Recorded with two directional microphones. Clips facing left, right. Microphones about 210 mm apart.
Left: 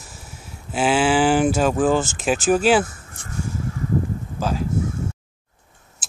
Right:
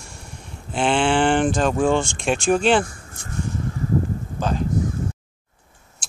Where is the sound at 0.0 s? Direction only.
5° left (ahead or behind).